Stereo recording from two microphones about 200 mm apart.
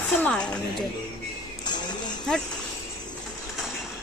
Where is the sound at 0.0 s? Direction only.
10° left (ahead or behind).